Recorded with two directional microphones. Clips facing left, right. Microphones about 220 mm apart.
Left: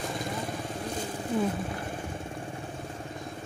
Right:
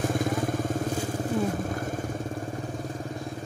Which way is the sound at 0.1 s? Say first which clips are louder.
Right 7 dB; 50° right (ahead or behind).